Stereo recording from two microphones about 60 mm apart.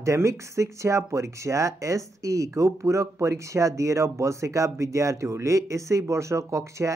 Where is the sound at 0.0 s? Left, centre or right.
Right.